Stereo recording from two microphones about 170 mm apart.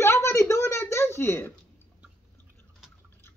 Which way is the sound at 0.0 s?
15° left (ahead or behind).